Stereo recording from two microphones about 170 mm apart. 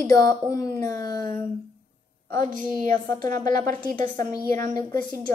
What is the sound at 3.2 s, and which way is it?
Speech, 15° left (ahead or behind).